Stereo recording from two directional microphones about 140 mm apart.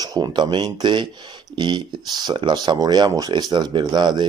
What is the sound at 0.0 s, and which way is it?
Speech, 30° right (ahead or behind).